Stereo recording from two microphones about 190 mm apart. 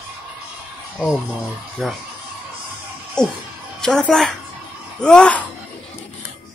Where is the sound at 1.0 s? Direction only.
5° right (ahead or behind).